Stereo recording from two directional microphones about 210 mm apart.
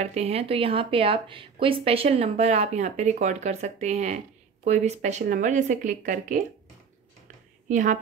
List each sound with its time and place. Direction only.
0.0 s speech: 30° right (ahead or behind)
7.6 s speech: 35° right (ahead or behind)